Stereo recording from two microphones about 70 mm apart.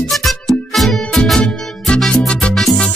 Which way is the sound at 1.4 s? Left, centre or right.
Centre.